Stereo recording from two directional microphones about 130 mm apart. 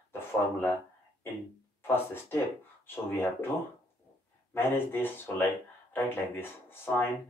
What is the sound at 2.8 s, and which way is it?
Speech, 15° left (ahead or behind).